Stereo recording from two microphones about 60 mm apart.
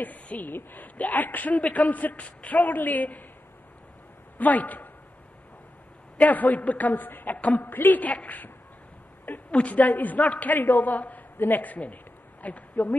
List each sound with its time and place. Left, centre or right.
0.0 s a woman's voice: left
4.4 s a woman's voice: left
6.1 s a woman's voice: left
10.1 s a man's voice: centre
11.9 s a sound: left